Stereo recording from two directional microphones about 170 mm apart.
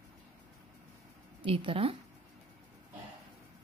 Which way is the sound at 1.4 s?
30° right (ahead or behind).